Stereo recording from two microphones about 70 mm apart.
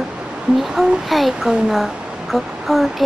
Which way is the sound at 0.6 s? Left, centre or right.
Centre.